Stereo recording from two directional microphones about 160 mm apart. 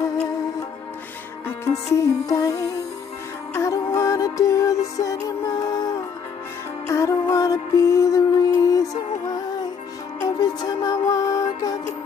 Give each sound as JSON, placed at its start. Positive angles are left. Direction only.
{"t": 2.0, "sound": "music", "side_deg": 20}
{"t": 10.2, "sound": "music", "side_deg": 25}